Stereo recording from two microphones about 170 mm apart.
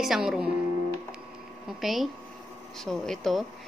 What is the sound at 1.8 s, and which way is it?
A woman's voice, centre (ahead or behind).